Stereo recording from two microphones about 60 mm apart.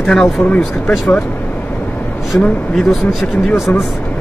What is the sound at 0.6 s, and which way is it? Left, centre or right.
Speech, centre.